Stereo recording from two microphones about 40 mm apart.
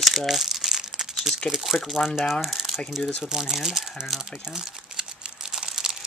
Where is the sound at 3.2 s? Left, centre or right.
Centre.